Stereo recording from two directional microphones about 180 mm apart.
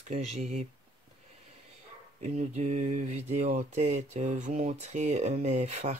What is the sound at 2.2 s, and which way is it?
Speech, 35° right (ahead or behind).